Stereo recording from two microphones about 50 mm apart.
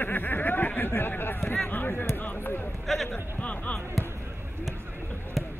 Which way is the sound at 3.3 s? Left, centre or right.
Left.